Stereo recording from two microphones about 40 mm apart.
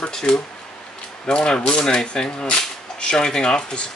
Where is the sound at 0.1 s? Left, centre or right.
Centre.